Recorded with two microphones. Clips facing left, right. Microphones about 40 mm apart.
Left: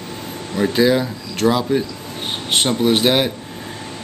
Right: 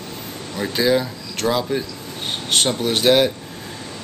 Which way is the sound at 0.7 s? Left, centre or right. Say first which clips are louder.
Left 1 dB; centre.